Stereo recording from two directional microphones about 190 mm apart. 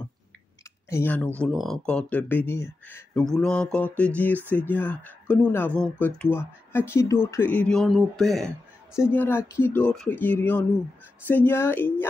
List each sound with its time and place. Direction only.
0.8 s speech: 10° left (ahead or behind)